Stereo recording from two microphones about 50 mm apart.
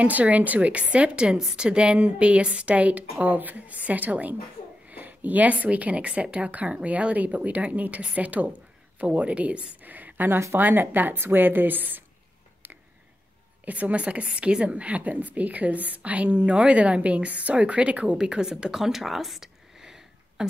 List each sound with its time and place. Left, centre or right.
0.0 s a woman's voice: right
13.7 s a woman's voice: right
18.1 s speech: centre